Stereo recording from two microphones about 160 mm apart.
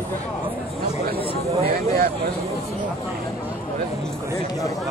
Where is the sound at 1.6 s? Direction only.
65° right (ahead or behind).